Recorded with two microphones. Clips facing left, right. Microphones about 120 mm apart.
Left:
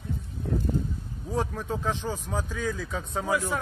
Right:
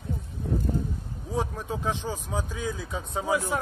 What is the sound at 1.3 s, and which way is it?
Speech, 5° right (ahead or behind).